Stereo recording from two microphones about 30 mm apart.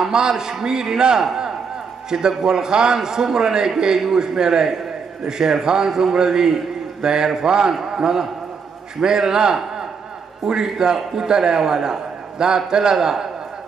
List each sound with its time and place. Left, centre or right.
0.1 s a man's voice: right